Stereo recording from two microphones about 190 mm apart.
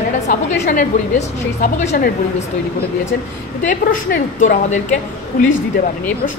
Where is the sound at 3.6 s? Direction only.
45° left (ahead or behind).